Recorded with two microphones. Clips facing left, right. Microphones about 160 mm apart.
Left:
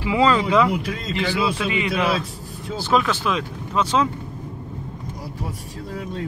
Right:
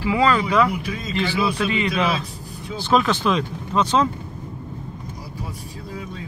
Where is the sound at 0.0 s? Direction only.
20° left (ahead or behind).